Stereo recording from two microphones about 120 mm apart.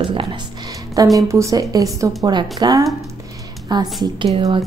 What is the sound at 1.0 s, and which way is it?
A woman's voice, 30° right (ahead or behind).